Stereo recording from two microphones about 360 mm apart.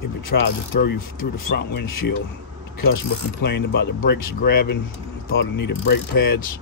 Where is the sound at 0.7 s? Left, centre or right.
Left.